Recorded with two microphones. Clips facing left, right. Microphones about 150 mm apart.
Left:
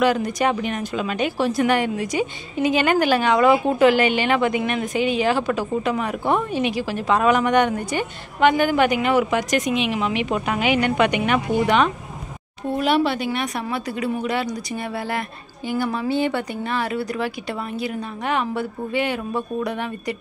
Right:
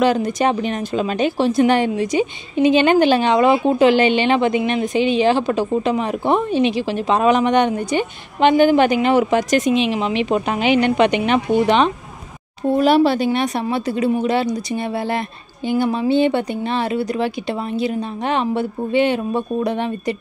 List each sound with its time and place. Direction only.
0.0 s speech: 30° right (ahead or behind)
12.7 s speech: 35° right (ahead or behind)